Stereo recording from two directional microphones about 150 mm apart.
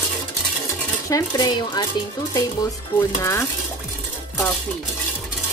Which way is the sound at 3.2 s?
20° left (ahead or behind).